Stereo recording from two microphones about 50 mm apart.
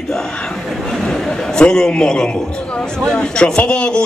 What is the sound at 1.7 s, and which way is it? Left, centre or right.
A man's voice, centre.